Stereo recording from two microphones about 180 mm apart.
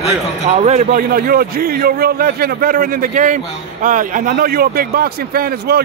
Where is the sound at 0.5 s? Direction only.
40° right (ahead or behind).